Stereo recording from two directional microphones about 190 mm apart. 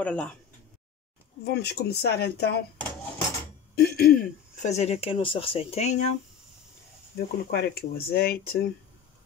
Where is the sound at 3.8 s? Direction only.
55° left (ahead or behind).